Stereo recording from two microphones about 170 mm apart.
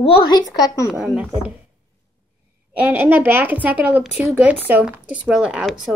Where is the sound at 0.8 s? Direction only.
5° right (ahead or behind).